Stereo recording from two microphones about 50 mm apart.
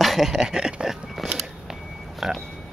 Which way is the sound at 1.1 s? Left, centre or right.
Centre.